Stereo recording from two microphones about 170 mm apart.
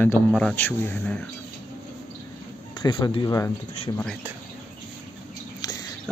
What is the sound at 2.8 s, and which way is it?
Speech, 25° left (ahead or behind).